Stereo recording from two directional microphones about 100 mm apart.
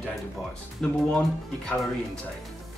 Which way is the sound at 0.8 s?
10° left (ahead or behind).